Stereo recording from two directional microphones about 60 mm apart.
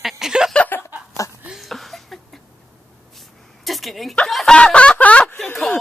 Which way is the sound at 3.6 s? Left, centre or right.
Centre.